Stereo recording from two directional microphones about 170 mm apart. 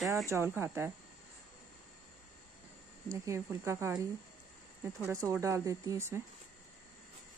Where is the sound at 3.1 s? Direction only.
15° right (ahead or behind).